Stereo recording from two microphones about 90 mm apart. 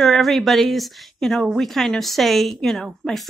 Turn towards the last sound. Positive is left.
turn(degrees=5)  # may be behind; listen again after turning